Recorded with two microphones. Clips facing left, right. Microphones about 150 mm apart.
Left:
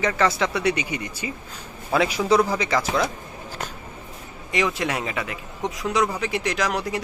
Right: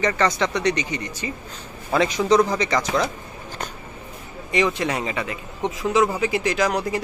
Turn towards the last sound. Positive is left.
turn(degrees=0)  # may be behind; listen again after turning